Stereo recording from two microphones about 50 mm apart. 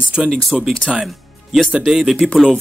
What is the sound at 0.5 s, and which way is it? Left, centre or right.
Speech, centre.